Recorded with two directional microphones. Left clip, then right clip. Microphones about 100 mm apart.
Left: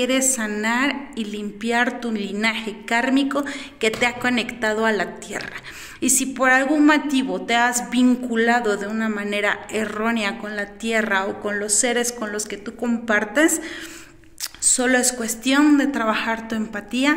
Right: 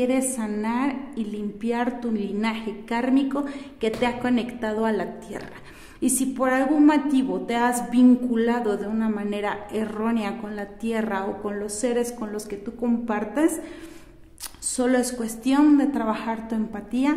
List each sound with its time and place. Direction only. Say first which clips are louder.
0.0 s a woman's voice: left 3 dB; 35° right (ahead or behind); by 8.2 s 50° right (ahead or behind)
8.3 s a woman's voice: left 5 dB; 35° right (ahead or behind)
14.7 s a woman's voice: left 4 dB; 35° right (ahead or behind)
15.6 s a woman's voice: left 1 dB; 50° right (ahead or behind)